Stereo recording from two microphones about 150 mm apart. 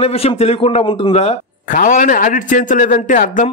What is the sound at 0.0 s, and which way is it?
A man's voice, 40° left (ahead or behind).